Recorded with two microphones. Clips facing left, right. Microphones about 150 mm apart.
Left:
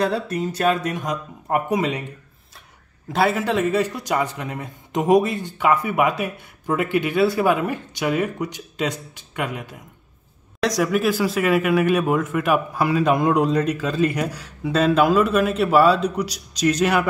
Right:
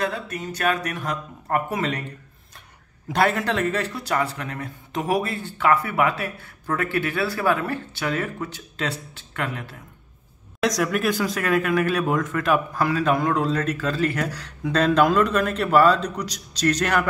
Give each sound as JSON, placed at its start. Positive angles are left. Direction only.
{"t": 0.0, "sound": "speech", "side_deg": 30}
{"t": 0.9, "sound": "speech", "side_deg": 15}
{"t": 3.1, "sound": "speech", "side_deg": 5}